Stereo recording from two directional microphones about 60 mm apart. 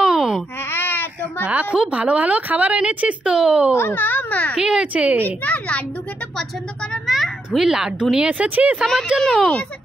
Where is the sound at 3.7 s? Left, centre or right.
Left.